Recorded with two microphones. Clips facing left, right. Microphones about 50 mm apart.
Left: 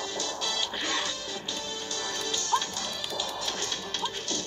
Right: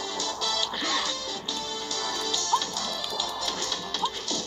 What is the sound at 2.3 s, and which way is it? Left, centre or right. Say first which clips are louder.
Music: right 1 dB; left.